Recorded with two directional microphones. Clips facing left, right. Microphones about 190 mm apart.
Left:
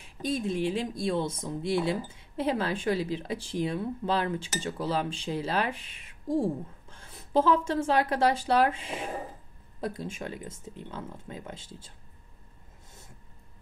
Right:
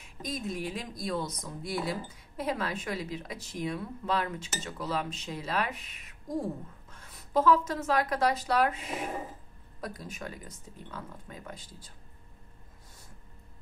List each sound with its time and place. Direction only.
0.0 s speech: 30° left (ahead or behind)